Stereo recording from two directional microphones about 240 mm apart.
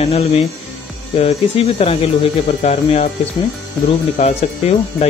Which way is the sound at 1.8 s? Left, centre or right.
Left.